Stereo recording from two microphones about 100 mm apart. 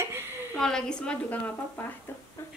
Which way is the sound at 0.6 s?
5° left (ahead or behind).